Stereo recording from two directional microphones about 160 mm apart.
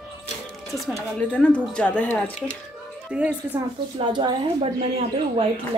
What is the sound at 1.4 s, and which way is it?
Speech, 5° left (ahead or behind).